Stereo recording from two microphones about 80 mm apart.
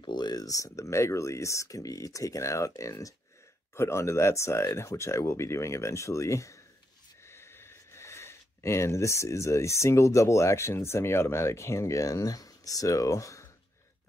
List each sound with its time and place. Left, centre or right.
0.0 s speech: left